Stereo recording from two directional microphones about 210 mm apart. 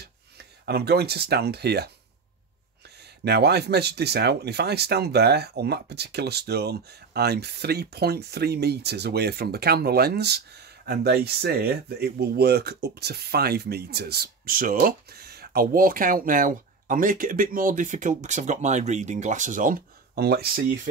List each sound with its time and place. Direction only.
0.7 s speech: 50° right (ahead or behind)
3.3 s speech: 50° right (ahead or behind)